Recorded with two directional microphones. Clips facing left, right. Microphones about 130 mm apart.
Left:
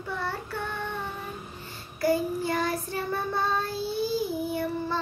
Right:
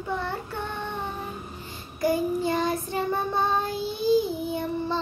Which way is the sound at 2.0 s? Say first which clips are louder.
Right 1 dB; 20° right (ahead or behind).